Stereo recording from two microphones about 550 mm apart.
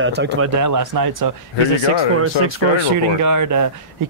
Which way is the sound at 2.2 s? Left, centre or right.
Right.